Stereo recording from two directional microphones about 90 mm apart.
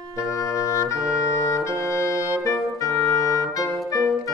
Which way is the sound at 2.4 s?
40° left (ahead or behind).